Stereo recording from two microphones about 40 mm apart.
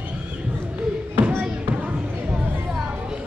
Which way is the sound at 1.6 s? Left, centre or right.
Right.